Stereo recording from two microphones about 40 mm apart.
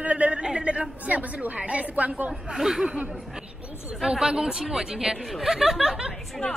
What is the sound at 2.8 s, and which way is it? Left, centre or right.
Speech, right.